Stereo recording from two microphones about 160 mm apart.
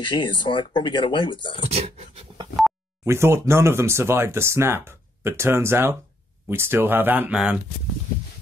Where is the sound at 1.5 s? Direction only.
40° right (ahead or behind).